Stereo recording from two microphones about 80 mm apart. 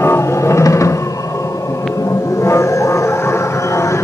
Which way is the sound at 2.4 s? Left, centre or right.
Left.